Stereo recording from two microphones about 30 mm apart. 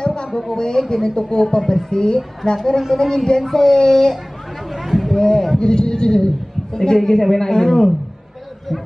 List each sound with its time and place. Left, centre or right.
0.0 s a sound: left
0.3 s a man's voice: centre
1.6 s a woman's voice: centre
1.9 s a man's voice: left
2.5 s a woman's voice: centre
3.7 s a man's voice: left
4.7 s a sound: centre
5.1 s a man's voice: centre
7.6 s a man's voice: centre